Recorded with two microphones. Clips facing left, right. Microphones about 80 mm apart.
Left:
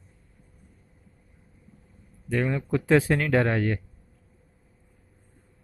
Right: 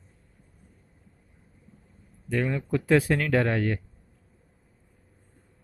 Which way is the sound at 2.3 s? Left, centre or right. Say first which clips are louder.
Left 1 dB; centre.